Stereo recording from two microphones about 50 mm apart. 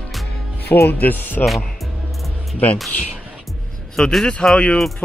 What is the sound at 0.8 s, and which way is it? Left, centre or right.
Speech, left.